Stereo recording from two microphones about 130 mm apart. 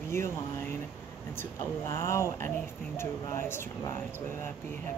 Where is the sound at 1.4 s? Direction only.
20° left (ahead or behind).